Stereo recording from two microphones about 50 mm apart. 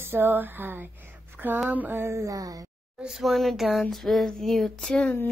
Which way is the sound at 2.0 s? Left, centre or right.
Right.